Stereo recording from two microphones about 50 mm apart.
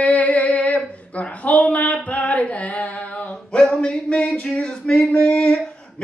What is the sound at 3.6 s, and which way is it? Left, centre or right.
Speech, centre.